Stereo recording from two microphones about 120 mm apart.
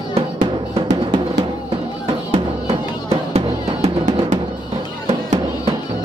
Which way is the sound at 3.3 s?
65° right (ahead or behind).